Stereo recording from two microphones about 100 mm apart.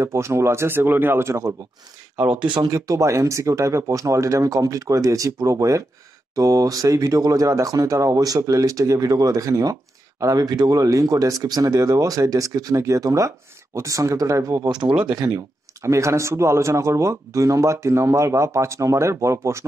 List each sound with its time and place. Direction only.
0.0 s speech: 25° right (ahead or behind)
2.3 s speech: 50° right (ahead or behind)
2.7 s speech: 35° right (ahead or behind)